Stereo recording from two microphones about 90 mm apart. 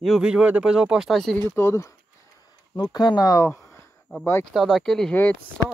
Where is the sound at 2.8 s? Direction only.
50° left (ahead or behind); by 3.9 s 30° left (ahead or behind).